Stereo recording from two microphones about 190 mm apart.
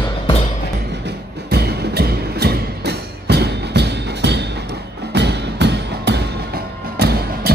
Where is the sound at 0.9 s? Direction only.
60° right (ahead or behind).